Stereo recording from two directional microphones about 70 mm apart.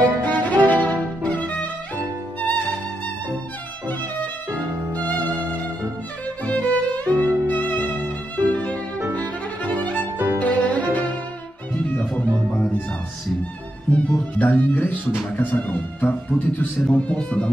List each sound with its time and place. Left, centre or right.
0.2 s music: left
4.5 s violin: right
6.4 s music: left
9.8 s music: left
10.1 s music: right
10.4 s music: left
12.5 s music: left
13.8 s music: left
16.8 s speech: centre